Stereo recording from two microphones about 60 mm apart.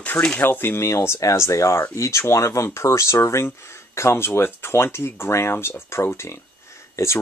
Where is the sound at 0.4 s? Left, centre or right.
Left.